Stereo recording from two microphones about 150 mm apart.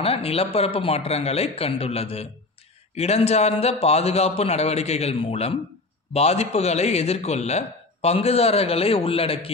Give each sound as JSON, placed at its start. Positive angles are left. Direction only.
{"t": 0.0, "sound": "a man's voice", "side_deg": 40}